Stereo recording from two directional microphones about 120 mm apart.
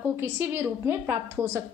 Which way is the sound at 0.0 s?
20° right (ahead or behind).